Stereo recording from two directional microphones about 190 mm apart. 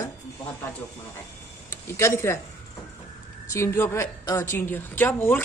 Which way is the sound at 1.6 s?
15° left (ahead or behind).